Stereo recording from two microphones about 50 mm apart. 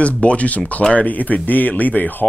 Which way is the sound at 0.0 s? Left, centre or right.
Left.